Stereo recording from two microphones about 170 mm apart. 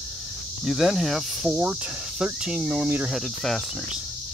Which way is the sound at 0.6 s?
Centre (ahead or behind).